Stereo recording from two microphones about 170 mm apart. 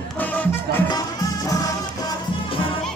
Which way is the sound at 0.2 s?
10° left (ahead or behind).